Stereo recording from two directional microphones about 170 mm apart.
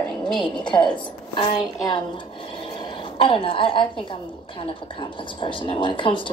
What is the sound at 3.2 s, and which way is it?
Speech, 30° left (ahead or behind).